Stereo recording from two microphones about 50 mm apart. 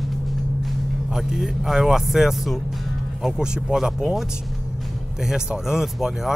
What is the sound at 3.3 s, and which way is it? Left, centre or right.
Speech, centre.